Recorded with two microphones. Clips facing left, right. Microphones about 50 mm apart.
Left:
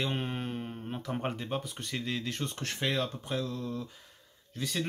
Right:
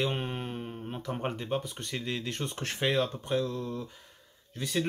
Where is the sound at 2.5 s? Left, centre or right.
Centre.